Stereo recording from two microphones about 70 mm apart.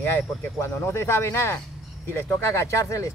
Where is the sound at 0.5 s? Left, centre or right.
Left.